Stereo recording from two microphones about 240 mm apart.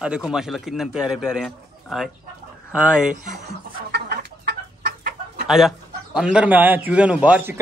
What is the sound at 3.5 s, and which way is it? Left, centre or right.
Chicken, right.